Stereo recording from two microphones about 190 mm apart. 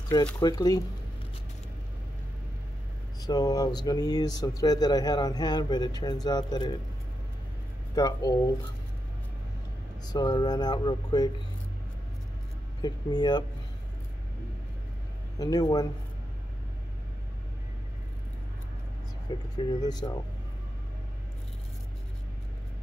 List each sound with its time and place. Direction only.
0.4 s speech: 20° left (ahead or behind)
3.2 s speech: 20° left (ahead or behind)
7.9 s speech: 20° left (ahead or behind)
10.0 s speech: 20° left (ahead or behind)
12.8 s speech: 20° left (ahead or behind)
15.3 s speech: 20° left (ahead or behind)
19.3 s speech: 25° left (ahead or behind)